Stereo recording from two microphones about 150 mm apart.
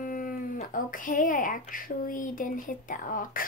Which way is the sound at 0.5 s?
65° left (ahead or behind).